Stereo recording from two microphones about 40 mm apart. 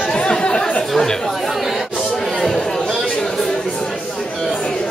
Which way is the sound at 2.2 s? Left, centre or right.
Centre.